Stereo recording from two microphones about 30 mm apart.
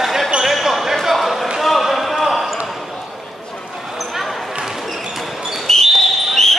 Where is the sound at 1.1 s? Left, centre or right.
Centre.